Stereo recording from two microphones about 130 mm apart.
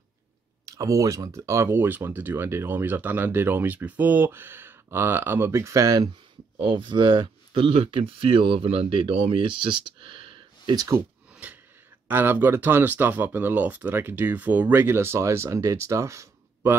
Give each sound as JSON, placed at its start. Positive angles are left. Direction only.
{"t": 0.7, "sound": "speech", "side_deg": -25}
{"t": 6.5, "sound": "speech", "side_deg": -40}
{"t": 11.4, "sound": "wheeze", "side_deg": -10}
{"t": 12.1, "sound": "speech", "side_deg": -15}